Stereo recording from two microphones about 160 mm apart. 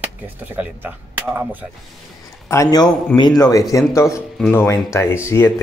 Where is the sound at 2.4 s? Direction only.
20° left (ahead or behind).